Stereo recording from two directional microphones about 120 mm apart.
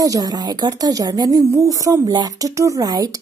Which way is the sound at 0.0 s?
30° right (ahead or behind).